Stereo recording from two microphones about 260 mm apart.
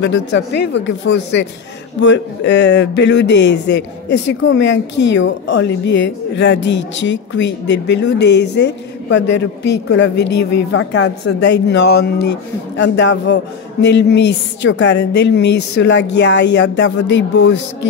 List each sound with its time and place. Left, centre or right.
0.0 s a man's voice: left